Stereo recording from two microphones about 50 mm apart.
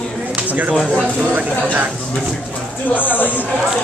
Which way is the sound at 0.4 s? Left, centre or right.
Right.